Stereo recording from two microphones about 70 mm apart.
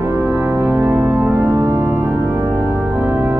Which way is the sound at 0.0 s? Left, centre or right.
Right.